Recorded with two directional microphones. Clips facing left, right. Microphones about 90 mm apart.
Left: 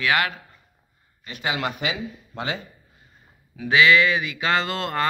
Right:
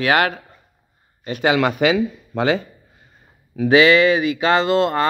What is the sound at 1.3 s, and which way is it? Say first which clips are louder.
Speech: right 9 dB; 65° right (ahead or behind).